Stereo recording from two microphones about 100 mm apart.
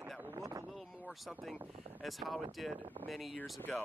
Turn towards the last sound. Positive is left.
turn(degrees=20)  # may be behind; listen again after turning